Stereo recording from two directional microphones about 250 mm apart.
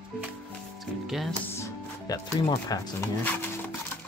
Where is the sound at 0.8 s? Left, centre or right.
Centre.